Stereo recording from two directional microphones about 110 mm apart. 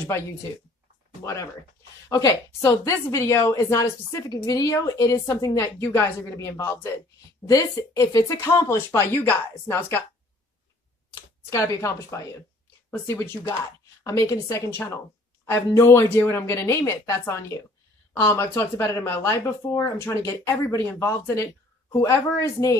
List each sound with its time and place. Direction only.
1.2 s a woman's voice: 25° left (ahead or behind)
5.8 s a woman's voice: 20° left (ahead or behind)
11.5 s a woman's voice: 30° left (ahead or behind)